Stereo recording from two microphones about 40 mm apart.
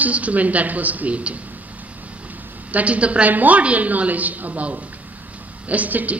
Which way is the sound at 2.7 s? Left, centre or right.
Right.